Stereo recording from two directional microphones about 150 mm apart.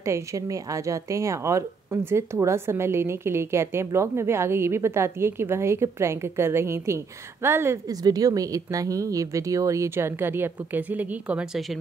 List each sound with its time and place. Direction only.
0.0 s a woman's voice: 20° right (ahead or behind); by 11.8 s 5° right (ahead or behind)